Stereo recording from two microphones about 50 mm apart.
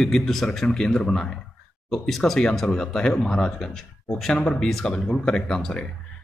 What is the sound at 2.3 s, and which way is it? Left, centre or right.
A man's voice, centre.